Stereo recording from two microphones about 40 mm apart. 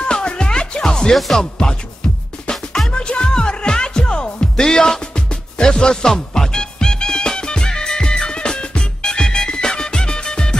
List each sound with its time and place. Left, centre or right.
0.0 s music: left
1.1 s music: centre
1.4 s music: centre
2.9 s music: left